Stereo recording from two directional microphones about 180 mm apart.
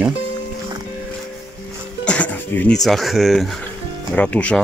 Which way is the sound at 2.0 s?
5° left (ahead or behind).